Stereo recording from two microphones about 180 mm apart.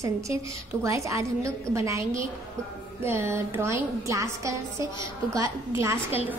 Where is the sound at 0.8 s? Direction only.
15° right (ahead or behind).